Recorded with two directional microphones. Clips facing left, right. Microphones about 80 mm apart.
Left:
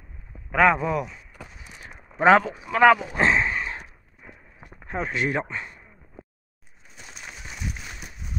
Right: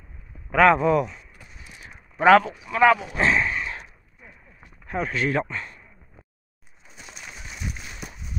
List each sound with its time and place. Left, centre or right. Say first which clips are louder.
0.5 s speech: right 3 dB; centre
1.8 s speech: left 1 dB; left
3.3 s a sound: even; left
4.8 s speech: right 1 dB; left